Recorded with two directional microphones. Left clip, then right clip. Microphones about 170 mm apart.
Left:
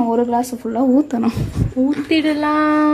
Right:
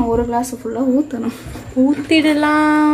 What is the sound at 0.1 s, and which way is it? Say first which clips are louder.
A woman's voice: even; 50° left (ahead or behind).